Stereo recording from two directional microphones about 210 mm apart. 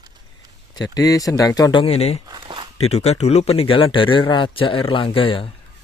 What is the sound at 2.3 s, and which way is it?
Speech, 20° right (ahead or behind).